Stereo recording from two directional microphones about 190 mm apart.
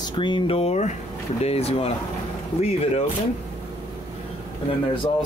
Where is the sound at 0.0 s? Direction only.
25° left (ahead or behind).